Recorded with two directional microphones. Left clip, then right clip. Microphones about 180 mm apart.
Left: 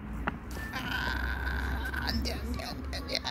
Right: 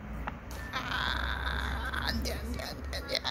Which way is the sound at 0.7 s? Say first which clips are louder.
Right 1 dB; 20° right (ahead or behind).